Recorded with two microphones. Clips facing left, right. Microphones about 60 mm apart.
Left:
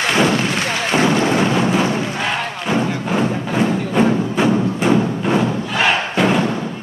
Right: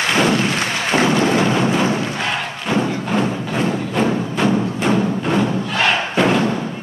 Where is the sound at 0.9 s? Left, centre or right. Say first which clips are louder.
Even; centre.